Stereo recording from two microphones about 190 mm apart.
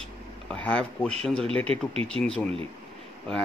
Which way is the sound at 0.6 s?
5° left (ahead or behind).